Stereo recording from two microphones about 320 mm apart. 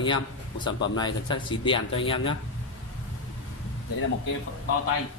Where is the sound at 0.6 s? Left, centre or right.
Left.